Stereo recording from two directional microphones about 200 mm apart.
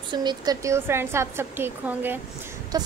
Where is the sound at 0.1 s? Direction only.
20° right (ahead or behind).